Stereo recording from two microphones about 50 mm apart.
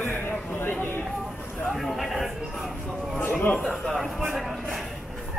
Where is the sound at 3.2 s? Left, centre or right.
Left.